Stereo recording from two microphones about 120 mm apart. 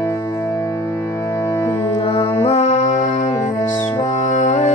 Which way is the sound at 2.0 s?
55° left (ahead or behind).